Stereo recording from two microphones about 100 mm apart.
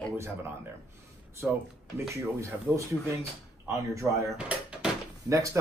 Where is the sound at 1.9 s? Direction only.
30° right (ahead or behind).